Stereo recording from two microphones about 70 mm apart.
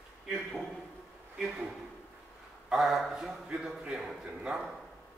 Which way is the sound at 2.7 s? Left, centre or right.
Centre.